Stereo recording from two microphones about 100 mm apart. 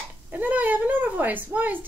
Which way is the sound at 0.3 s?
15° right (ahead or behind).